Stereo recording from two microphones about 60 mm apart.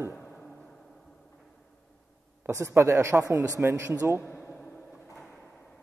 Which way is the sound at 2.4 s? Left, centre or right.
Right.